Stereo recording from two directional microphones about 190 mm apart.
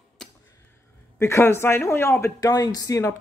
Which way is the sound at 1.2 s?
15° left (ahead or behind).